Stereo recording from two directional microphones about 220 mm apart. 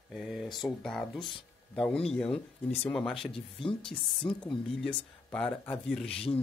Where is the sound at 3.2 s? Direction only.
25° left (ahead or behind).